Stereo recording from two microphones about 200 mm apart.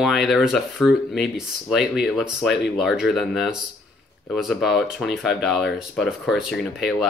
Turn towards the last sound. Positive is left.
turn(degrees=0)  # may be behind; listen again after turning